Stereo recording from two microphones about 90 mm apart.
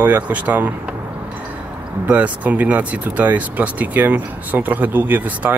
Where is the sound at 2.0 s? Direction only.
15° right (ahead or behind).